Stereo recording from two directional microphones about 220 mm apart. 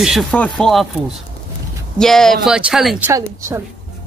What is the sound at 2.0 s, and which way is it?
A man's voice, centre (ahead or behind).